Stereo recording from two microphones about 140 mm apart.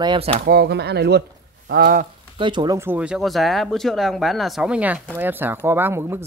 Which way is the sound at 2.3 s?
35° right (ahead or behind).